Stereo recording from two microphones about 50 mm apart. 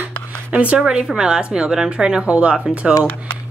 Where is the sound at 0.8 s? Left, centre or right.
Centre.